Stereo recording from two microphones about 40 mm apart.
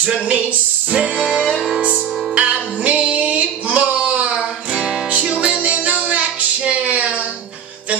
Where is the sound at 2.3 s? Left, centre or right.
Right.